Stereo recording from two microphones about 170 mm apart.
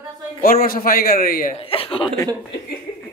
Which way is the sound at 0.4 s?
60° left (ahead or behind).